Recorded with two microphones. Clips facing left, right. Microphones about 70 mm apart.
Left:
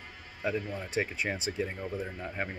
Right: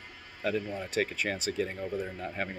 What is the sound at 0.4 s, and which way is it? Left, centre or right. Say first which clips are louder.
Speech: right 1 dB; centre.